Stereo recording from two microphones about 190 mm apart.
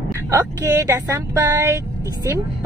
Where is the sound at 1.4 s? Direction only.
15° right (ahead or behind).